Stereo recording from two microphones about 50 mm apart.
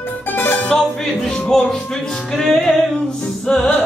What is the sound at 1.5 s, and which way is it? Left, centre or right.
Music, centre.